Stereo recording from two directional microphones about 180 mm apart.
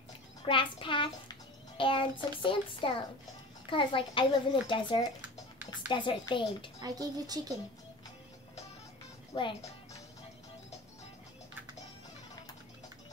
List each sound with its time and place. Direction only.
0.5 s a child's voice: 30° left (ahead or behind)
6.8 s speech: 20° right (ahead or behind)
9.3 s speech: 25° left (ahead or behind)